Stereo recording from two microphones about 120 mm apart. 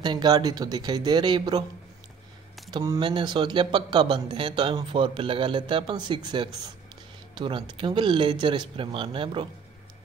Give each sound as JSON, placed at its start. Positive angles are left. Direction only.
{"t": 0.0, "sound": "speech", "side_deg": -35}
{"t": 3.0, "sound": "speech", "side_deg": -40}